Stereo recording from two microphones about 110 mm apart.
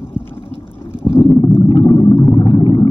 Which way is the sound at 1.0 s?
55° left (ahead or behind).